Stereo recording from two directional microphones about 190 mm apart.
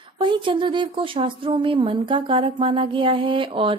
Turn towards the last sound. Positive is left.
turn(degrees=-30)  # may be behind; listen again after turning